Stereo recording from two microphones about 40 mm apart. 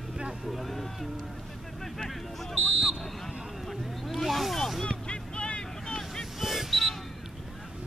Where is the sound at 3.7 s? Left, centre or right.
Centre.